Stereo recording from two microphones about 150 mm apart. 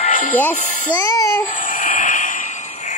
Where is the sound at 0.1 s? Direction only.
60° left (ahead or behind).